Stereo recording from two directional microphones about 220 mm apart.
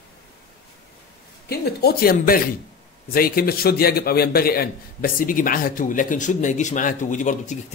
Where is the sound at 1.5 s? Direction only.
45° left (ahead or behind).